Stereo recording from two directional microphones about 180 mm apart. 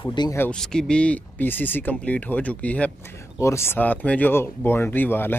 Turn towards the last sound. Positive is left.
turn(degrees=10)  # may be behind; listen again after turning